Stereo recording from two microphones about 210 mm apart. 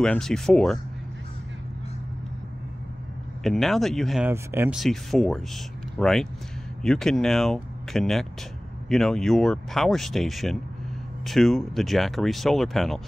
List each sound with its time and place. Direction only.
0.0 s speech: 5° left (ahead or behind)
3.4 s speech: centre (ahead or behind)
4.3 s speech: 10° right (ahead or behind)